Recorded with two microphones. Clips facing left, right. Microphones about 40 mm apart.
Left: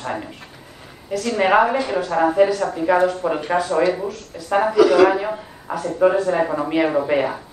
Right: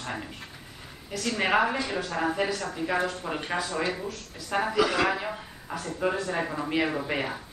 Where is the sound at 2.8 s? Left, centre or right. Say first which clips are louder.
Left 11 dB; left.